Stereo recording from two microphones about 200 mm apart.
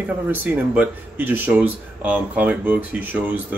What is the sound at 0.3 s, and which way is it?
Speech, 10° right (ahead or behind).